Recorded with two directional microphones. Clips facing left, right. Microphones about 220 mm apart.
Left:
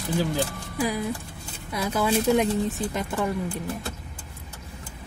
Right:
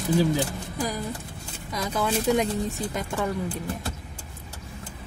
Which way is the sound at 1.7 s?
5° left (ahead or behind).